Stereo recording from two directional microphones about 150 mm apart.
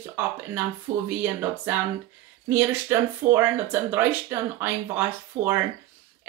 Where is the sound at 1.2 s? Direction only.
10° right (ahead or behind).